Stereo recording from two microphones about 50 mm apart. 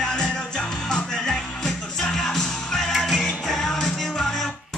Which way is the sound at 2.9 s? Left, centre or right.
Centre.